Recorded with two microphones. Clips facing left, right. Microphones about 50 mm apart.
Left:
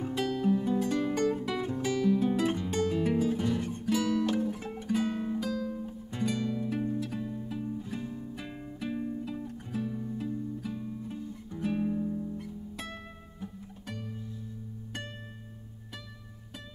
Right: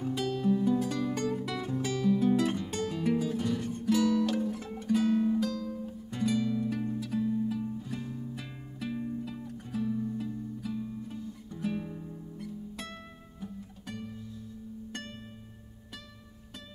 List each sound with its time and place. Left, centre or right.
0.1 s music: centre
4.6 s guitar: centre
4.9 s music: centre